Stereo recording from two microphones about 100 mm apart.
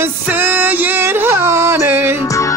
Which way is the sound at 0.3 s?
20° right (ahead or behind).